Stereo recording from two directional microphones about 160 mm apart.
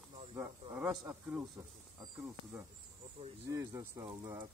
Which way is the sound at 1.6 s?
20° right (ahead or behind).